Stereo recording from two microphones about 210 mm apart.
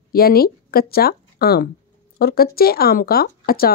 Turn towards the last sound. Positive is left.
turn(degrees=45)  # may be behind; listen again after turning